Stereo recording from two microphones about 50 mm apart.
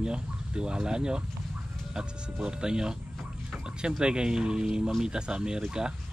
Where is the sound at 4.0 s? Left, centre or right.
Centre.